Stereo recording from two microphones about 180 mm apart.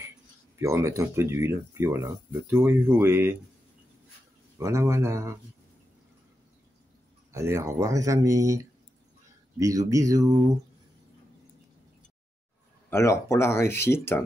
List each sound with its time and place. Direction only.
0.6 s speech: 15° right (ahead or behind)
4.6 s speech: 15° right (ahead or behind)
7.3 s speech: 15° right (ahead or behind)
12.9 s speech: 15° left (ahead or behind)